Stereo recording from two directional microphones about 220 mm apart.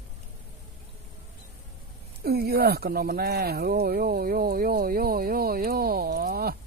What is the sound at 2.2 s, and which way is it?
Speech, 45° right (ahead or behind).